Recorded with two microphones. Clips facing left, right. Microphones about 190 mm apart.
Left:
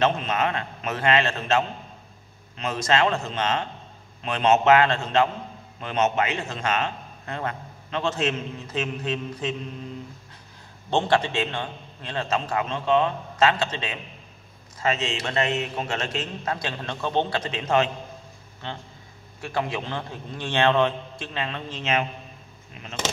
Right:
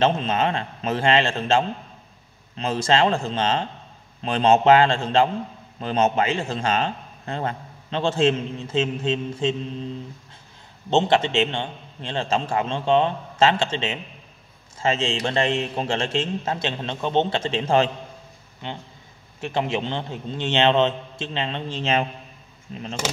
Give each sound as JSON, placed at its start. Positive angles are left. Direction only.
{"t": 0.0, "sound": "a man's voice", "side_deg": -30}
{"t": 10.9, "sound": "a man's voice", "side_deg": -20}
{"t": 18.6, "sound": "a man's voice", "side_deg": -15}